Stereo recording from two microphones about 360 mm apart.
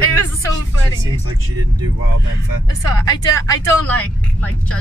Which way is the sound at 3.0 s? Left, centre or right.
Centre.